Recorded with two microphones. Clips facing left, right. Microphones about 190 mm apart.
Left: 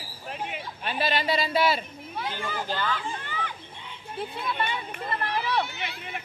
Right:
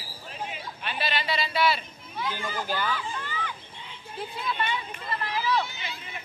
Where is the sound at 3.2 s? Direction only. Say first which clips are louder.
Left 1 dB; 55° left (ahead or behind).